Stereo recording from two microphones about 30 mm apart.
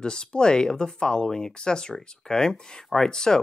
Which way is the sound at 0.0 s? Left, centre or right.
Left.